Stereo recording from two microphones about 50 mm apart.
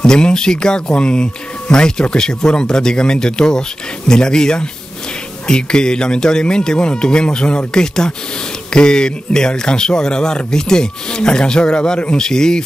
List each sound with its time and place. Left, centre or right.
0.0 s speech: centre